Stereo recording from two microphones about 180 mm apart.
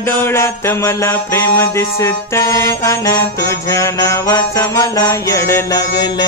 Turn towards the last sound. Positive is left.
turn(degrees=20)  # may be behind; listen again after turning